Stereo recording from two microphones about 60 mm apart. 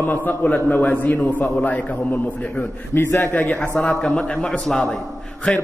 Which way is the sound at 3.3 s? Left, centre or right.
Left.